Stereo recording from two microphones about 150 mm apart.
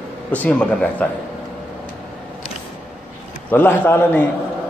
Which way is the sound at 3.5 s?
15° left (ahead or behind).